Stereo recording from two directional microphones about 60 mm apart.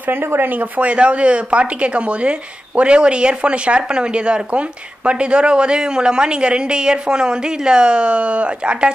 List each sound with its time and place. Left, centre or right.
0.0 s speech: right; by 8.9 s centre